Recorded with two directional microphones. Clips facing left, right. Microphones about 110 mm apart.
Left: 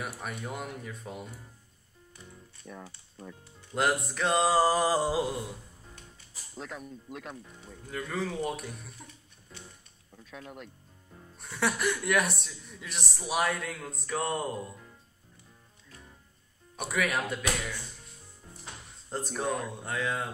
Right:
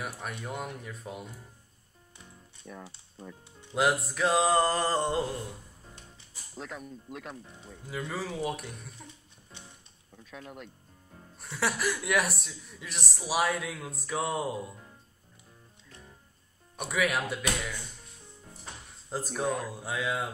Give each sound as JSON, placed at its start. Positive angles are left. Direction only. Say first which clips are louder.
{"t": 0.0, "sound": "a woman's voice", "louder": "even", "side_deg": 0}
{"t": 2.6, "sound": "a woman's voice", "louder": "even", "side_deg": 0}
{"t": 6.5, "sound": "a woman's voice", "louder": "even", "side_deg": 0}
{"t": 10.1, "sound": "a woman's voice", "louder": "even", "side_deg": 0}
{"t": 16.7, "sound": "a woman's voice", "louder": "right 1 dB", "side_deg": 0}
{"t": 19.0, "sound": "a woman's voice", "louder": "right 1 dB", "side_deg": 0}